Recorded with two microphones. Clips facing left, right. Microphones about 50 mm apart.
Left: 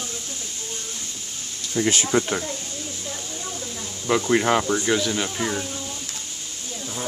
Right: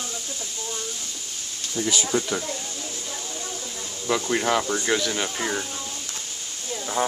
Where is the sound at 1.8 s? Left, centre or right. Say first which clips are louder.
Left 4 dB; left.